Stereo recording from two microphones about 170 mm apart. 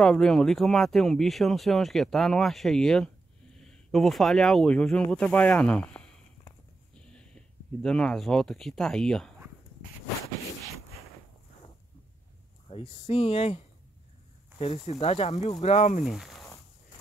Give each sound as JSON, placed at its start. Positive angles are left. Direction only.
{"t": 0.0, "sound": "speech", "side_deg": 5}
{"t": 7.2, "sound": "speech", "side_deg": 5}
{"t": 12.6, "sound": "speech", "side_deg": 35}
{"t": 14.6, "sound": "speech", "side_deg": 35}
{"t": 16.0, "sound": "a sound", "side_deg": 0}